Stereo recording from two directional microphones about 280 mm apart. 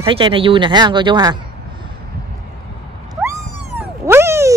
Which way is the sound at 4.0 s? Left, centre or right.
Centre.